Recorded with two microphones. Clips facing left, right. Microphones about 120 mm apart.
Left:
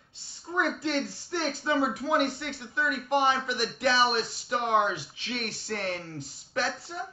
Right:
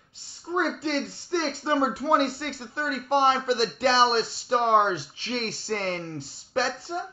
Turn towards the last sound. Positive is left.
turn(degrees=-30)  # may be behind; listen again after turning